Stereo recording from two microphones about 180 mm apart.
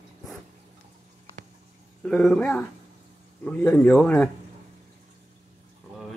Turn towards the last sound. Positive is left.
turn(degrees=5)  # may be behind; listen again after turning